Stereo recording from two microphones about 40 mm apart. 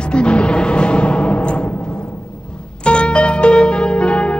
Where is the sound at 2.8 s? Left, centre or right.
Left.